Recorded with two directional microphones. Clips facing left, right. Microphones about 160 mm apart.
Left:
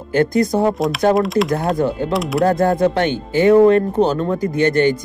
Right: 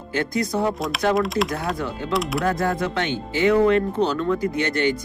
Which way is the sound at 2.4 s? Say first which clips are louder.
Left 8 dB; 40° left (ahead or behind).